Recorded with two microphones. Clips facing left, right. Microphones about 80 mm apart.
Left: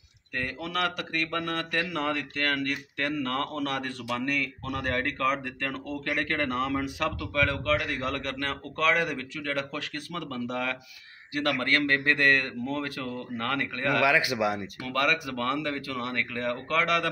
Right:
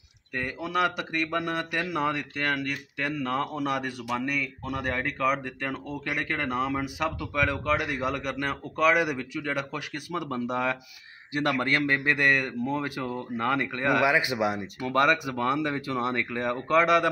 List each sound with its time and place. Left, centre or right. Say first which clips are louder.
0.4 s a man's voice: right 3 dB; centre